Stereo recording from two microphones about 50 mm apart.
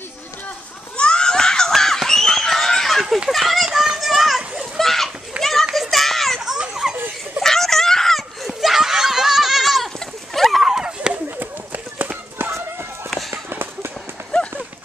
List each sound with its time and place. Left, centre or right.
0.9 s screaming: centre
3.3 s children playing: centre
4.7 s a sound: centre
5.4 s children playing: centre
5.8 s a sound: centre
6.4 s baby laughter: centre
7.4 s screaming: centre
9.9 s a sound: centre
11.2 s run: right
12.4 s run: right
13.5 s run: right